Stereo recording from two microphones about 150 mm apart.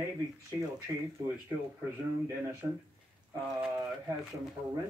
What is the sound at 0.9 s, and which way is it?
Speech, 20° right (ahead or behind).